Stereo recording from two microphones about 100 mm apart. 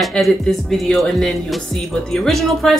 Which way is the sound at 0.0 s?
Centre (ahead or behind).